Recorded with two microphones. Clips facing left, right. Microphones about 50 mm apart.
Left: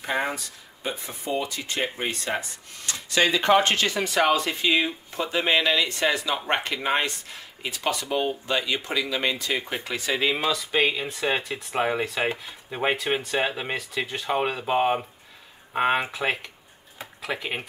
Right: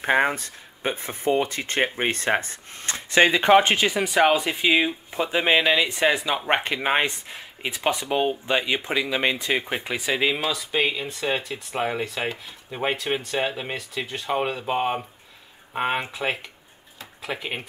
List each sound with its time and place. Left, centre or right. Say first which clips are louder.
0.0 s speech: right 6 dB; right; by 10.3 s centre
10.3 s speech: left 1 dB; centre